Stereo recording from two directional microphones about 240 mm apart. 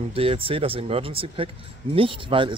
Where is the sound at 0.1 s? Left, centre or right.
Right.